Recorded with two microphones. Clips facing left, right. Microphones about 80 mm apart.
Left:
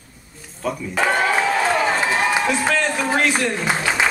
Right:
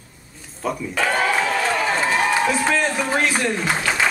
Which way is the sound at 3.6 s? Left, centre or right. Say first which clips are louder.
Left 1 dB; centre.